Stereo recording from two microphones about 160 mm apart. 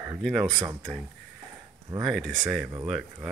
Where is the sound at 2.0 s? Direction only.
Centre (ahead or behind).